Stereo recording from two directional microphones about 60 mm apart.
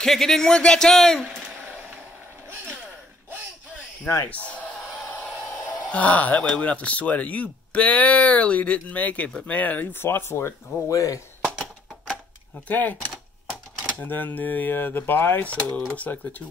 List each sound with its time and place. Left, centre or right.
0.0 s speech: centre
5.9 s speech: left
10.0 s speech: left
10.9 s speech: left
12.6 s speech: left
15.4 s speech: left